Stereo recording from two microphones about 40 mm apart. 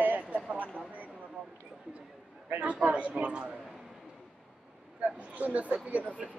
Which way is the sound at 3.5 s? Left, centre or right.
Centre.